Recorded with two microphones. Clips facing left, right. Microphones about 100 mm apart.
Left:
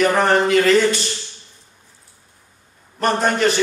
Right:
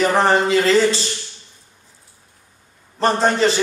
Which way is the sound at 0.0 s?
30° right (ahead or behind).